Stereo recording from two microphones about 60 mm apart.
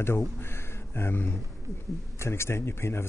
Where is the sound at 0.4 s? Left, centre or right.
Left.